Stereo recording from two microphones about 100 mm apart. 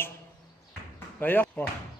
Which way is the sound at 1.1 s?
20° left (ahead or behind).